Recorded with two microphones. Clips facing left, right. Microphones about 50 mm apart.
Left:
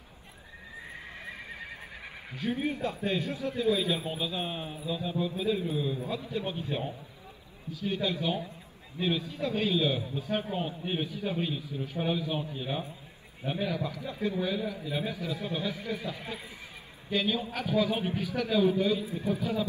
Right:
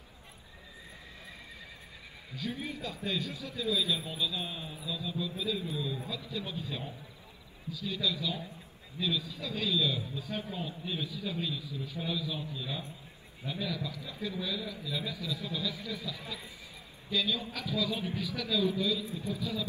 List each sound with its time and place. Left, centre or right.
1.2 s horse: left
2.3 s a man's voice: left
4.1 s a man's voice: left